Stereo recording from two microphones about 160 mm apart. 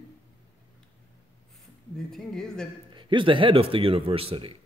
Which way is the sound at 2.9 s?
30° right (ahead or behind).